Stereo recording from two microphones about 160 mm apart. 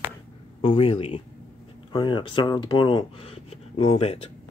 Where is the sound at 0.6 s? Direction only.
35° left (ahead or behind).